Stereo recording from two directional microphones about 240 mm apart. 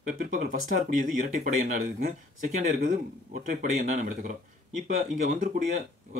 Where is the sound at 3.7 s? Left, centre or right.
Right.